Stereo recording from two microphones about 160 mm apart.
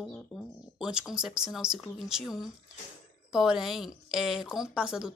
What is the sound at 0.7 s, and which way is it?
A woman's voice, 5° right (ahead or behind).